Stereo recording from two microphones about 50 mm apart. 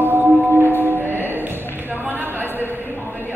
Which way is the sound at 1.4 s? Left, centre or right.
Right.